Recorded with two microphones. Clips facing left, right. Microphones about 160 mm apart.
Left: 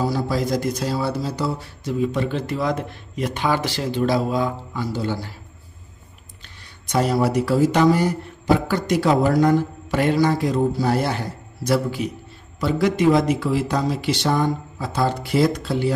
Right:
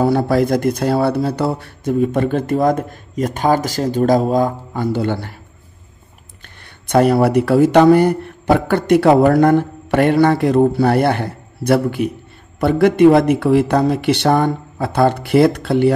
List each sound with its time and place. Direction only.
0.0 s speech: 60° right (ahead or behind)
6.4 s speech: 60° right (ahead or behind)